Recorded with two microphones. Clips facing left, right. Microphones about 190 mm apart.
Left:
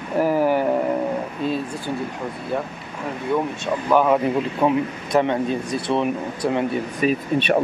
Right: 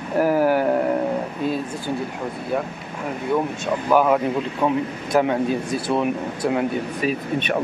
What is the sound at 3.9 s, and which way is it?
Speech, 5° right (ahead or behind).